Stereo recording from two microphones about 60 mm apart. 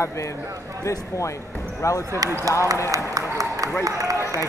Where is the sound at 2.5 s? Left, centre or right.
Right.